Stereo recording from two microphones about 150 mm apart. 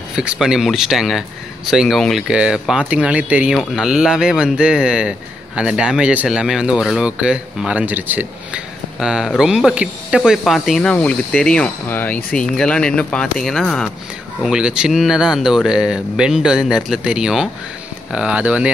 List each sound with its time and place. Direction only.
0.1 s speech: 5° right (ahead or behind)